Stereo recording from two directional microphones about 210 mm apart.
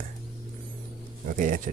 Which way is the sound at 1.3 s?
40° right (ahead or behind).